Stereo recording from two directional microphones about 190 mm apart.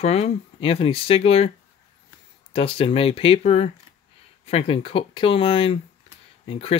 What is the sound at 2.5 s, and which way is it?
Speech, 30° left (ahead or behind).